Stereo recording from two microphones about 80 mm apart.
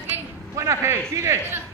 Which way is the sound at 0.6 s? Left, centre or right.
Right.